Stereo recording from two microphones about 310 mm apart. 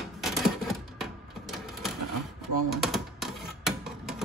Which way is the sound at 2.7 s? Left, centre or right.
Centre.